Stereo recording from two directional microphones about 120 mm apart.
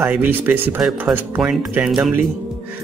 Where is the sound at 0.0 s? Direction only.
15° right (ahead or behind).